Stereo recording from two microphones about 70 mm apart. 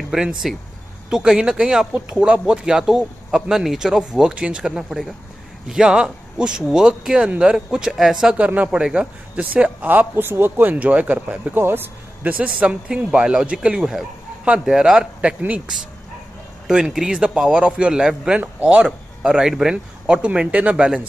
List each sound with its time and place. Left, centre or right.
0.1 s speech: centre
8.4 s speech: right
8.7 s speech: centre
9.4 s speech: right
11.5 s speech: right
16.6 s speech: centre